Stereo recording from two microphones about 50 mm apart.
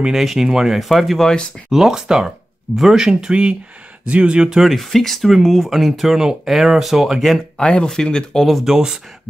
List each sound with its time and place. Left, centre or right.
0.1 s speech: centre
4.6 s speech: centre
7.5 s speech: centre
8.5 s speech: centre